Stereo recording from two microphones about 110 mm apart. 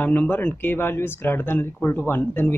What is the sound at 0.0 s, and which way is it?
Speech, 15° left (ahead or behind).